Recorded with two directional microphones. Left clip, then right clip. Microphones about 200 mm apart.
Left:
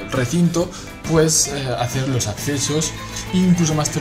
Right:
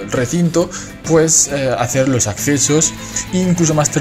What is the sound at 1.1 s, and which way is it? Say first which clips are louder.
Speech: right 4 dB; 25° right (ahead or behind).